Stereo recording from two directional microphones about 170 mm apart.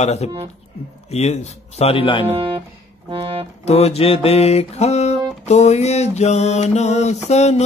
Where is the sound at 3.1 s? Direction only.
35° right (ahead or behind).